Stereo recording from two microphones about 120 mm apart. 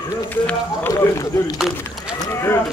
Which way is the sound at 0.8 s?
20° left (ahead or behind).